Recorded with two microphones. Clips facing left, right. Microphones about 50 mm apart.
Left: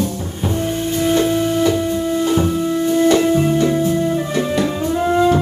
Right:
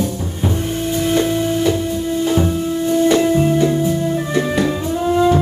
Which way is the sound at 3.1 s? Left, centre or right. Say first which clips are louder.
Even; centre.